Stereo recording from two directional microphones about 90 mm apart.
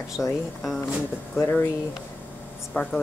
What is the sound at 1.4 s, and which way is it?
Speech, 20° left (ahead or behind).